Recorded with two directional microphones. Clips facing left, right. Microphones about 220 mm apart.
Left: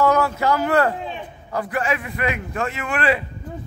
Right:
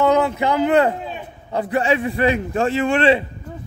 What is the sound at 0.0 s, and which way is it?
A man's voice, 20° right (ahead or behind).